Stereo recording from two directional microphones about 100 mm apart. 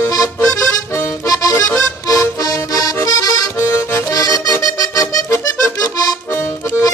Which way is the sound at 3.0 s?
35° left (ahead or behind).